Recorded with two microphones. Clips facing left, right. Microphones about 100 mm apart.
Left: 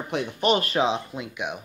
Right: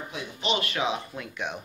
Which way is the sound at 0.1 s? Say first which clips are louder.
Left 8 dB; 60° left (ahead or behind).